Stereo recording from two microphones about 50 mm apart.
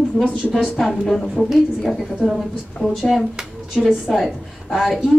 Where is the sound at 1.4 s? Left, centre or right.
Centre.